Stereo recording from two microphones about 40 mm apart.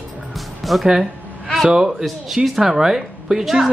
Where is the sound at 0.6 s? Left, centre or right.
Centre.